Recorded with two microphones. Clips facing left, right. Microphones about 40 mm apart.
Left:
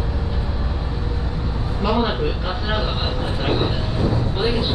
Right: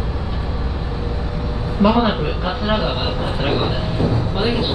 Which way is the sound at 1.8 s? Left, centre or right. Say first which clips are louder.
Right 4 dB; centre.